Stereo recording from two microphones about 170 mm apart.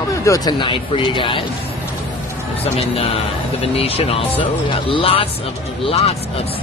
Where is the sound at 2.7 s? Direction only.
35° left (ahead or behind).